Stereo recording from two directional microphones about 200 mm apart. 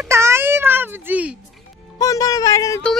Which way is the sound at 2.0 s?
15° left (ahead or behind).